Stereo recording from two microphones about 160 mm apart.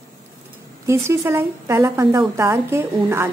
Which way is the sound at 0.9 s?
15° right (ahead or behind).